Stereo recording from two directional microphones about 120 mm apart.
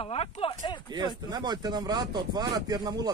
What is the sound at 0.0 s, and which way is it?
Speech, 50° left (ahead or behind).